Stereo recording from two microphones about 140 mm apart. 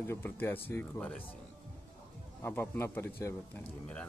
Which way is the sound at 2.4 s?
15° left (ahead or behind).